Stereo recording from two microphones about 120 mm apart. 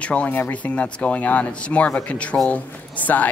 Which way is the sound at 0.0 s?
10° left (ahead or behind).